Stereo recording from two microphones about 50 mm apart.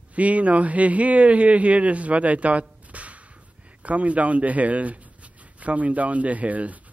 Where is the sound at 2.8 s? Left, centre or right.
Right.